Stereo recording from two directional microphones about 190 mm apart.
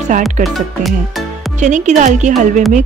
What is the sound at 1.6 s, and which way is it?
Speech, 40° right (ahead or behind).